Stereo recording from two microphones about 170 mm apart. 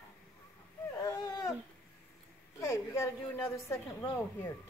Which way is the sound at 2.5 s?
15° left (ahead or behind).